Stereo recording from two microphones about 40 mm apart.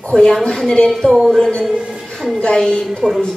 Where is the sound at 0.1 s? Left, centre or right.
Centre.